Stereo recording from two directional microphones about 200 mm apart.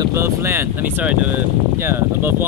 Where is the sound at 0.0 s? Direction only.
15° right (ahead or behind).